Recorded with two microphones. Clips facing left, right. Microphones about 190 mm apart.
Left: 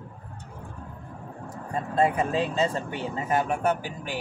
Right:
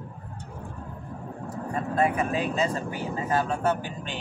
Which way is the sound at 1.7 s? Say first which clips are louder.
Left 1 dB; 30° left (ahead or behind).